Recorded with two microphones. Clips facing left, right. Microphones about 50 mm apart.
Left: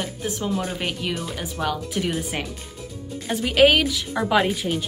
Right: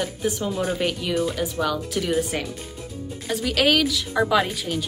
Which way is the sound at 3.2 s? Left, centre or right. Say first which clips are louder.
Left 4 dB; centre.